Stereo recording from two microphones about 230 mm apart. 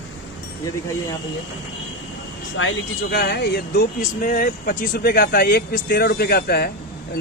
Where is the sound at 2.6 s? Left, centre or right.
Left.